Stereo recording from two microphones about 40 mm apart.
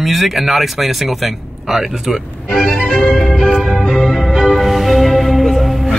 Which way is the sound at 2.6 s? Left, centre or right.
Centre.